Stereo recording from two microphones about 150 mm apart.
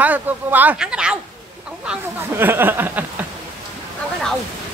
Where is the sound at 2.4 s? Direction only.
15° right (ahead or behind).